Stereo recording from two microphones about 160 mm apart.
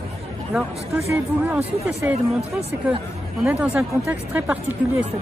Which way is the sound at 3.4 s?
5° right (ahead or behind).